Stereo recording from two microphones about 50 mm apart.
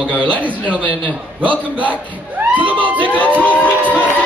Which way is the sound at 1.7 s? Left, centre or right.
Right.